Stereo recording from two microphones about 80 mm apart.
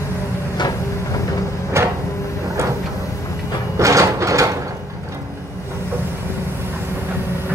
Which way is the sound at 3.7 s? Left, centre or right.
Right.